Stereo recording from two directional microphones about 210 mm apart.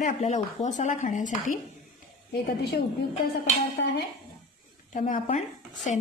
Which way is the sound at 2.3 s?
55° left (ahead or behind).